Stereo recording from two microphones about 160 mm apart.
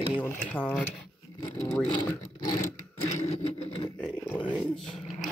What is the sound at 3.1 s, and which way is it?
Vehicle, 45° left (ahead or behind).